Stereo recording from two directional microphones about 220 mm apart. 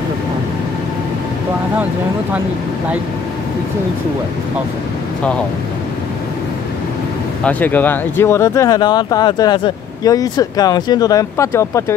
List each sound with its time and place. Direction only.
7.4 s speech: 10° left (ahead or behind)